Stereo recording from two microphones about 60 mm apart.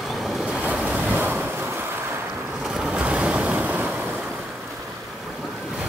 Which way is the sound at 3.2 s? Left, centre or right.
Right.